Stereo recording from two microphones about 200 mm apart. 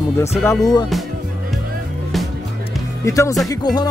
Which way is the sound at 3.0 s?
15° left (ahead or behind).